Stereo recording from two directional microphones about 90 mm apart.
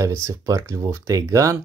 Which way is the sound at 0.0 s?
35° right (ahead or behind).